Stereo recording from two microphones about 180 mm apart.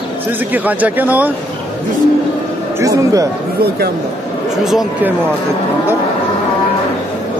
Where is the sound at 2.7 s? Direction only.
20° right (ahead or behind).